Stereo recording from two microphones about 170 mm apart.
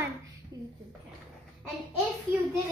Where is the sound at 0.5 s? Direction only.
25° right (ahead or behind).